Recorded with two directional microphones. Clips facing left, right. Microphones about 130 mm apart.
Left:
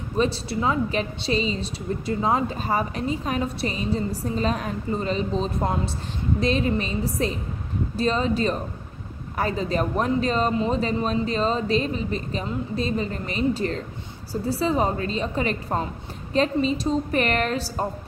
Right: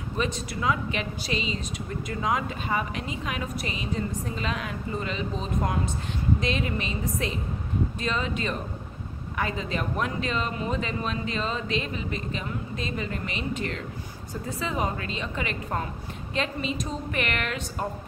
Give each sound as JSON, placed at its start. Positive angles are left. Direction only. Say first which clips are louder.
{"t": 0.2, "sound": "a woman's voice", "louder": "left 6 dB", "side_deg": 30}